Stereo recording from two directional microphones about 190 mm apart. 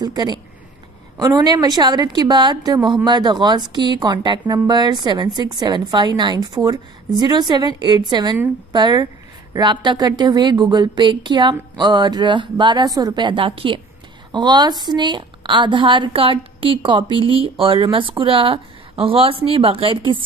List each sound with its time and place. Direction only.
0.0 s a woman's voice: 20° right (ahead or behind)